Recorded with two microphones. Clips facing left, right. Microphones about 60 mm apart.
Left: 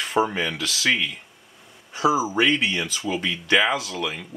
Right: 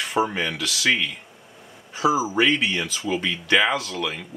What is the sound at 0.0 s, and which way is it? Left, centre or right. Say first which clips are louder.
Speech: left 1 dB; centre.